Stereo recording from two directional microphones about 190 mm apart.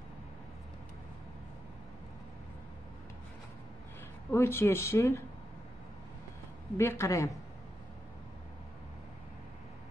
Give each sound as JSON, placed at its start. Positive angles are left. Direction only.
{"t": 4.3, "sound": "speech", "side_deg": 15}
{"t": 6.8, "sound": "speech", "side_deg": 15}